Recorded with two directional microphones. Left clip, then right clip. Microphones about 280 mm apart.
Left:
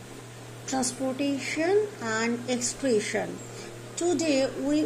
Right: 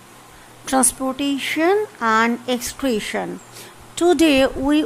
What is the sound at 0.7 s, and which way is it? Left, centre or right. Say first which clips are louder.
Speech: right 9 dB; right.